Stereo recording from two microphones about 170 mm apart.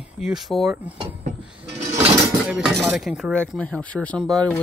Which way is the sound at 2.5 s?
Centre (ahead or behind).